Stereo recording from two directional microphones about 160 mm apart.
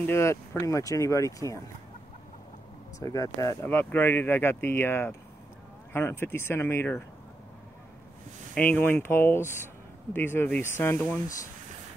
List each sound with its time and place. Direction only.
0.0 s speech: 15° left (ahead or behind)
3.0 s speech: 20° left (ahead or behind)
8.5 s speech: 10° left (ahead or behind)